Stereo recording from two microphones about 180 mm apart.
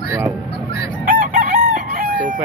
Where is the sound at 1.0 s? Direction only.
50° right (ahead or behind).